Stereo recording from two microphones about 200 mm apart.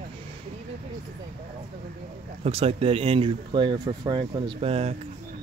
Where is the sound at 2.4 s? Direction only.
30° right (ahead or behind).